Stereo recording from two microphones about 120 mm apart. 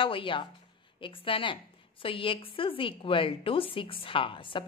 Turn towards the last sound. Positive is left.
turn(degrees=45)  # may be behind; listen again after turning